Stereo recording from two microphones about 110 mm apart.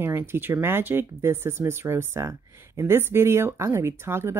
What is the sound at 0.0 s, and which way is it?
Speech, 20° right (ahead or behind).